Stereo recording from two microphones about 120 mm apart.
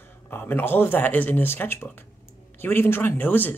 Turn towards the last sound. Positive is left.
turn(degrees=15)  # may be behind; listen again after turning